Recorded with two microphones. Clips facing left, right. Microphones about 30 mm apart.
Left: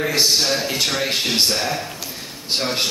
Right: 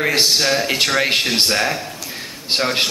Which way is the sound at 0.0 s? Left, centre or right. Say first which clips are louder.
Right 2 dB; right.